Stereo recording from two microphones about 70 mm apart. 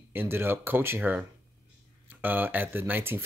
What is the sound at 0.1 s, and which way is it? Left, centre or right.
Speech, right.